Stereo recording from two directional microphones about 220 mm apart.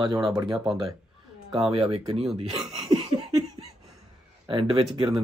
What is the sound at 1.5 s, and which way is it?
Speech, 25° right (ahead or behind).